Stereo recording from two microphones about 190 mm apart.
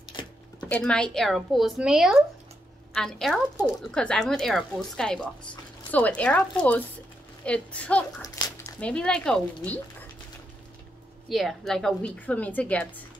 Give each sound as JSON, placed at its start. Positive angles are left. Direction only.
{"t": 0.1, "sound": "a sound", "side_deg": 25}
{"t": 0.7, "sound": "a woman's voice", "side_deg": 5}
{"t": 7.4, "sound": "speech", "side_deg": 5}
{"t": 11.2, "sound": "a woman's voice", "side_deg": 0}